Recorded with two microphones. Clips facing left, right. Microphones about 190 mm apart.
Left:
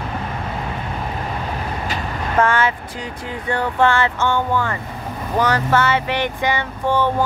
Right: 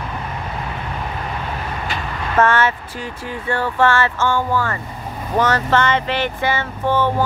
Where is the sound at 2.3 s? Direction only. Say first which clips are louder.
Right 1 dB; 10° left (ahead or behind).